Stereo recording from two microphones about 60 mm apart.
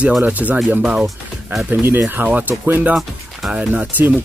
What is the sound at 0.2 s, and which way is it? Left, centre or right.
Speech, right.